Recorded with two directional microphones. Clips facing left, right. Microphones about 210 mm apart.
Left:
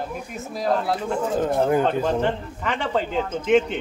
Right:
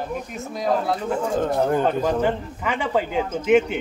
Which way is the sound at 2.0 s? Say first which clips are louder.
Right 1 dB; 5° right (ahead or behind).